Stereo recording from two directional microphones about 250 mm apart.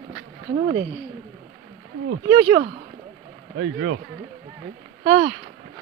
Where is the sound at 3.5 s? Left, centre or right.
Right.